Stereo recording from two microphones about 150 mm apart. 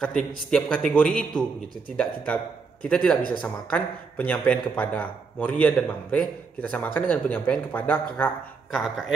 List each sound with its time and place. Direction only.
0.4 s a man's voice: 5° left (ahead or behind)
8.7 s speech: centre (ahead or behind)